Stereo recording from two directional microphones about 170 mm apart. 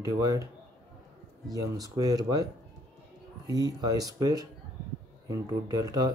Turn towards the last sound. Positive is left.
turn(degrees=-20)  # may be behind; listen again after turning